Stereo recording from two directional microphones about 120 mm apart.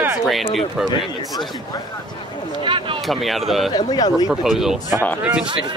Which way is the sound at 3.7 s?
35° left (ahead or behind).